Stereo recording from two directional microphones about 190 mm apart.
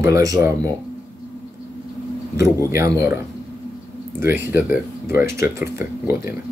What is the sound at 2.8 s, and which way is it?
Speech, 15° right (ahead or behind).